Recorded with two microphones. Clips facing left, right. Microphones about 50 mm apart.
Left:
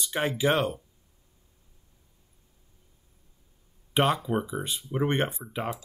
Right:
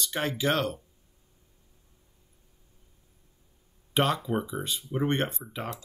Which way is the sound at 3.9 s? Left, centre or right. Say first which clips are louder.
Left 2 dB; centre.